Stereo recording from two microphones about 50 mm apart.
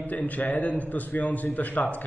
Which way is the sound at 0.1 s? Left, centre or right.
Left.